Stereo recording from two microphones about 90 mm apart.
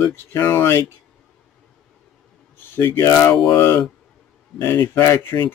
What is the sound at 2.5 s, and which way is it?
Speech, 25° left (ahead or behind).